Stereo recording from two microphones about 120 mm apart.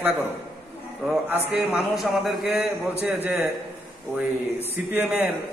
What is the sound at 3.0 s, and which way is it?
Speech, 15° right (ahead or behind).